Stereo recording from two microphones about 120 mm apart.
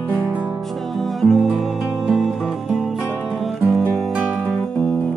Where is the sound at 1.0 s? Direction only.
Centre (ahead or behind).